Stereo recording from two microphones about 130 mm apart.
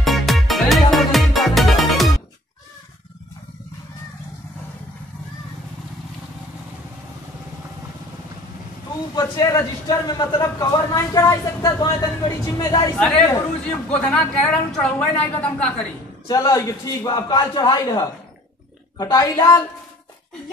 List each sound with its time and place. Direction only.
0.0 s music: centre (ahead or behind)
9.1 s a man's voice: 25° left (ahead or behind)
13.8 s a woman's voice: 10° left (ahead or behind)
16.3 s a man's voice: 25° left (ahead or behind)